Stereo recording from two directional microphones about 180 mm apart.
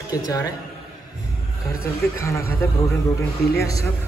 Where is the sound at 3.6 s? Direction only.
15° left (ahead or behind).